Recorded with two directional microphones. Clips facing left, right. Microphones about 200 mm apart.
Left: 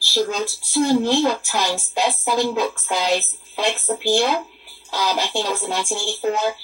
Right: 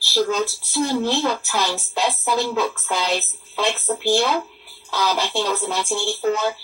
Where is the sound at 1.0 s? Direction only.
15° left (ahead or behind).